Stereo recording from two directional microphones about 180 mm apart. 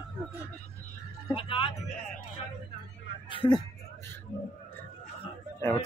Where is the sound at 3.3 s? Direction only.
25° left (ahead or behind).